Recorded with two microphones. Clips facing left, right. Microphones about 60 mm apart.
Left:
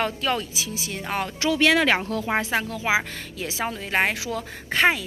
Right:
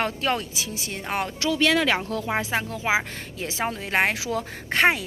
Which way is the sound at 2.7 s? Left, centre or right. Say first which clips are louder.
Even; right.